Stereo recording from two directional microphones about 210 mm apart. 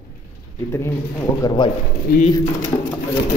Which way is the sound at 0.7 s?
10° left (ahead or behind).